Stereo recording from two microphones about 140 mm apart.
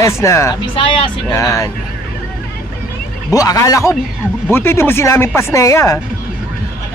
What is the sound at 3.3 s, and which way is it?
A man's voice, 25° left (ahead or behind).